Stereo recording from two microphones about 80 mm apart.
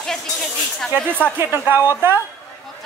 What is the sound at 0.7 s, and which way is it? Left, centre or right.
Speech, centre.